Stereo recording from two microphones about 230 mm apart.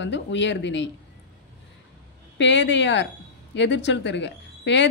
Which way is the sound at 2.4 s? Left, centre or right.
Left.